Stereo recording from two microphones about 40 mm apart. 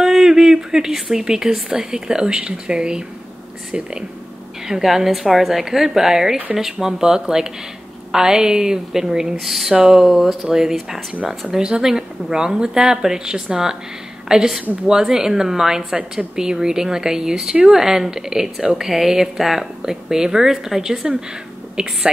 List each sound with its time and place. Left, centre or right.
0.0 s a woman's voice: centre
4.6 s a woman's voice: centre